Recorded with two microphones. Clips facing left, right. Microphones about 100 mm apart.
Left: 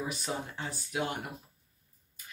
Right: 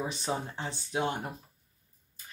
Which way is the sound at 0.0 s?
30° right (ahead or behind).